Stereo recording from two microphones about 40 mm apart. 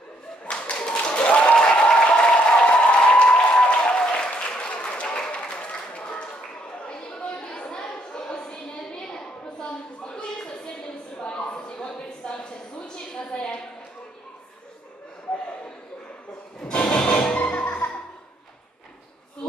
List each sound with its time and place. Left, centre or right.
0.5 s tap: left
1.0 s applause: left
6.9 s chatter: left
7.7 s a sound: left
16.6 s music: left